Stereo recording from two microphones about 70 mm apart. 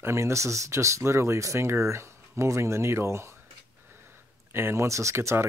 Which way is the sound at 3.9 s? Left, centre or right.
Right.